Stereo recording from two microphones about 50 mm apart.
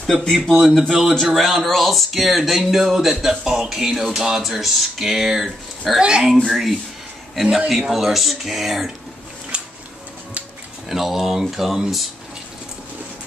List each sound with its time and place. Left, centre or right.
0.0 s a man's voice: centre
0.5 s speech: centre
9.5 s a sound: right
10.9 s speech: centre